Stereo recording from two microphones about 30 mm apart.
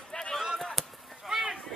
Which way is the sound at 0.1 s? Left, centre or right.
Left.